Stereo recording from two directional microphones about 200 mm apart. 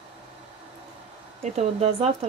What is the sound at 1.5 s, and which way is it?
Speech, 30° right (ahead or behind).